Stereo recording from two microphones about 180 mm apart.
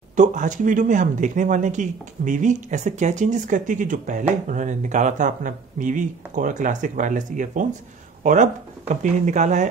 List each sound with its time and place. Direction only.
0.1 s speech: 45° right (ahead or behind)